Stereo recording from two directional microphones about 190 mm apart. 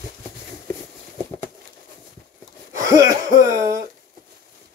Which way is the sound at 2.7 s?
15° right (ahead or behind).